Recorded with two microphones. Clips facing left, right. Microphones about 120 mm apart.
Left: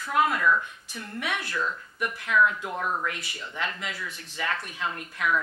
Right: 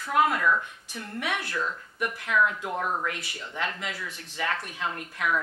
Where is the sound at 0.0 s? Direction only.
45° right (ahead or behind).